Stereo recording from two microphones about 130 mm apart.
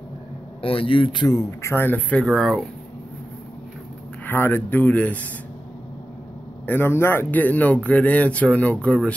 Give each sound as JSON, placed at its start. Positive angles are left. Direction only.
{"t": 0.6, "sound": "a man's voice", "side_deg": 45}
{"t": 1.6, "sound": "speech", "side_deg": 20}
{"t": 4.3, "sound": "speech", "side_deg": 15}
{"t": 6.6, "sound": "speech", "side_deg": 15}